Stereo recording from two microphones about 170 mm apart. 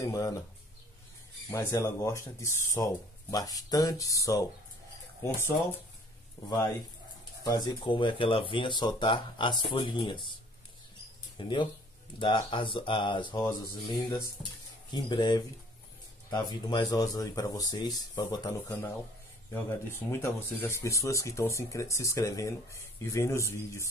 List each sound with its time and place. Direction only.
0.0 s speech: 20° left (ahead or behind)
1.5 s speech: 20° left (ahead or behind)
7.4 s speech: 25° left (ahead or behind)
11.3 s speech: 30° left (ahead or behind)
20.1 s speech: 15° left (ahead or behind)